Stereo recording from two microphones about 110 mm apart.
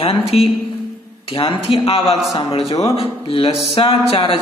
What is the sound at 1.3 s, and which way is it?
A man's voice, 55° left (ahead or behind).